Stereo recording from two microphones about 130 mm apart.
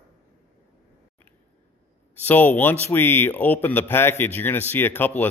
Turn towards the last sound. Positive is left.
turn(degrees=15)  # may be behind; listen again after turning